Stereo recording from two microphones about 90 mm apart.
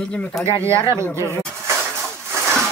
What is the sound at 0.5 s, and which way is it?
Speech, 35° right (ahead or behind).